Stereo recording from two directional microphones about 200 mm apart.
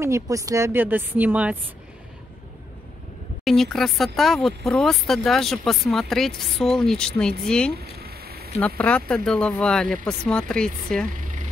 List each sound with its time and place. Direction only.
0.0 s a woman's voice: 15° right (ahead or behind)
3.4 s speech: centre (ahead or behind)
7.7 s a sound: 50° right (ahead or behind)
8.5 s speech: 5° left (ahead or behind)